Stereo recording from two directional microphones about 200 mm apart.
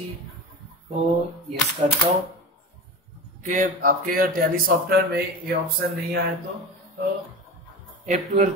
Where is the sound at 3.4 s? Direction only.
40° right (ahead or behind).